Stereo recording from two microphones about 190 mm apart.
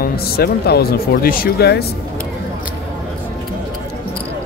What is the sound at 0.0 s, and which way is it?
Speech, 55° left (ahead or behind).